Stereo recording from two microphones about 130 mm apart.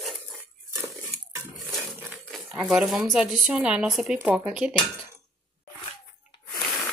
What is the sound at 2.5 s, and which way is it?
Speech, 5° right (ahead or behind).